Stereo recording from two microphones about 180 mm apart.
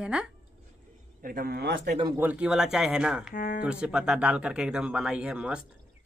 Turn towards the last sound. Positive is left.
turn(degrees=-5)  # may be behind; listen again after turning